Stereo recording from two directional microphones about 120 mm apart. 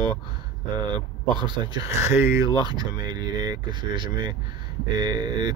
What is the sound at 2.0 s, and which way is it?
Speech, 20° right (ahead or behind).